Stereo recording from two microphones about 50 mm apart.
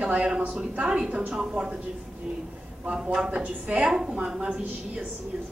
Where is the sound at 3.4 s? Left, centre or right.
Right.